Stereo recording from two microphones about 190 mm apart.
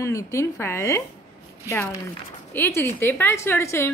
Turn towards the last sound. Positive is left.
turn(degrees=15)  # may be behind; listen again after turning